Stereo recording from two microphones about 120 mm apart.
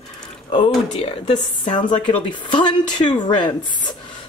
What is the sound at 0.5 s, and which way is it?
A woman's voice, 45° left (ahead or behind).